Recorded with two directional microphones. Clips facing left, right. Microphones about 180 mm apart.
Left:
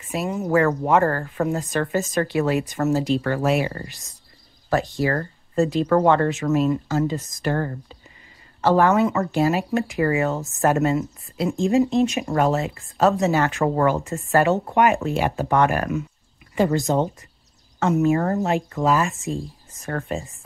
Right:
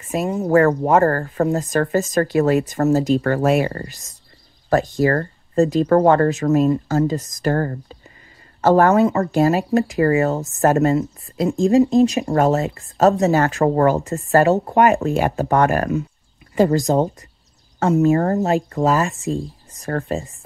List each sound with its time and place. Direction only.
0.1 s speech: 40° right (ahead or behind)